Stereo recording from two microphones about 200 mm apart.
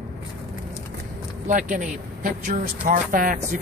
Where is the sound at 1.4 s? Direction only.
40° right (ahead or behind).